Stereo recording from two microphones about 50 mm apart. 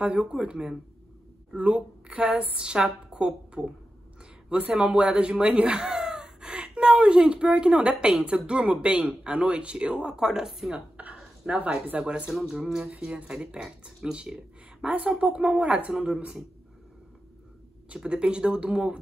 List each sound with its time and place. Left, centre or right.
0.0 s speech: right; by 10.7 s centre
10.7 s a sound: right
12.0 s speech: right
12.3 s speech: centre
13.0 s speech: centre
17.9 s speech: centre